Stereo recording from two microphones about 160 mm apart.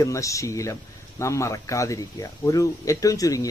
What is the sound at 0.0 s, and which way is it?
Speech, 20° left (ahead or behind).